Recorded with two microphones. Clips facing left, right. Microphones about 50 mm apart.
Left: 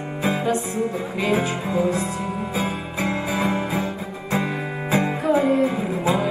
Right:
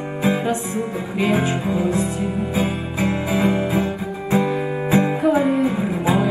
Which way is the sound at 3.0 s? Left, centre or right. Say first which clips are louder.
Right 4 dB; centre.